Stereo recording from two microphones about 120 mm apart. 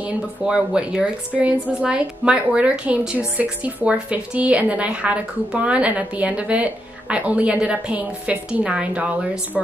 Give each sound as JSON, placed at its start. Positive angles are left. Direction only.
{"t": 0.0, "sound": "a woman's voice", "side_deg": -5}